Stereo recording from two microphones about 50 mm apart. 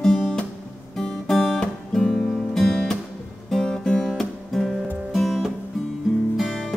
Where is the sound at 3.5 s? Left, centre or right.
Centre.